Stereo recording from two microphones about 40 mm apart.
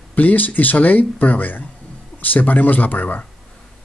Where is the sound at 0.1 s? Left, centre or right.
Left.